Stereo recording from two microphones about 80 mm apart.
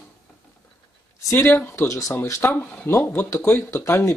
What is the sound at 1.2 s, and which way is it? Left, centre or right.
Speech, left.